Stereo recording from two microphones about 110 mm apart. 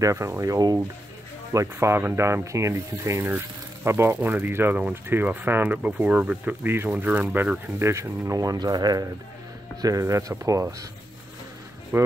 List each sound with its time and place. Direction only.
0.0 s speech: 25° right (ahead or behind)
7.8 s speech: 25° right (ahead or behind)
11.9 s speech: 20° right (ahead or behind)